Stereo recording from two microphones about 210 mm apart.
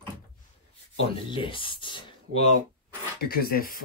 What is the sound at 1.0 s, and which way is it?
Speech, 25° left (ahead or behind).